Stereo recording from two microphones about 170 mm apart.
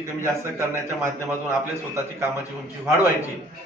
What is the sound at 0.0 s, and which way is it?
Speech, 15° right (ahead or behind).